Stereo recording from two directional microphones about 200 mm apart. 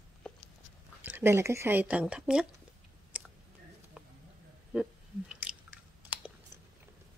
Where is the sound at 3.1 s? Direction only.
5° right (ahead or behind).